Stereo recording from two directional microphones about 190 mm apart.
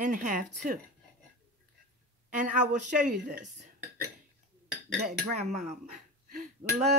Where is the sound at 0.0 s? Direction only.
40° right (ahead or behind).